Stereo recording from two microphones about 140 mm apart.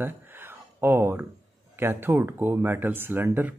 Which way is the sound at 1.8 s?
15° right (ahead or behind).